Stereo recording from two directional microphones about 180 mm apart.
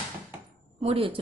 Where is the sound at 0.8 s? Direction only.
30° right (ahead or behind).